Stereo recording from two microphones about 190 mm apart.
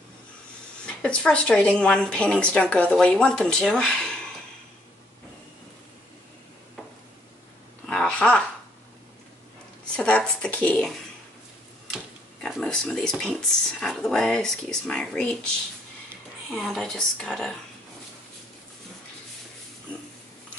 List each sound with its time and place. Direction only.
0.8 s a woman's voice: 5° left (ahead or behind)
7.8 s a sound: 5° left (ahead or behind)
9.9 s a woman's voice: 5° left (ahead or behind)
12.4 s a woman's voice: centre (ahead or behind)
16.5 s a woman's voice: centre (ahead or behind)